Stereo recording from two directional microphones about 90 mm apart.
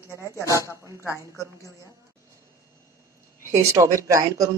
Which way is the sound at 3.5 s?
35° right (ahead or behind).